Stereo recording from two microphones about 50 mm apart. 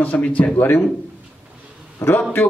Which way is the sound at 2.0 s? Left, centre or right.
Left.